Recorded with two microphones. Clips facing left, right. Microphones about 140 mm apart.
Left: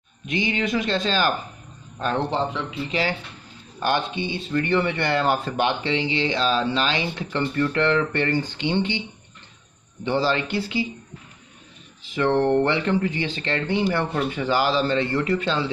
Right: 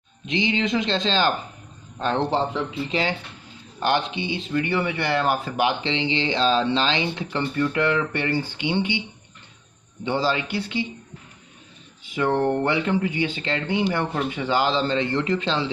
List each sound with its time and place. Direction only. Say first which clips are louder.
0.3 s speech: right 1 dB; 25° right (ahead or behind)
3.8 s speech: right 1 dB; 15° right (ahead or behind)
5.9 s speech: left 1 dB; 25° right (ahead or behind)
10.0 s speech: left 1 dB; 15° right (ahead or behind)
10.5 s speech: left 2 dB; 5° left (ahead or behind)
12.0 s speech: left 1 dB; 15° right (ahead or behind)